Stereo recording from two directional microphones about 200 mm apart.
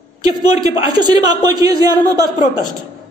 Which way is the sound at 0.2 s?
20° right (ahead or behind).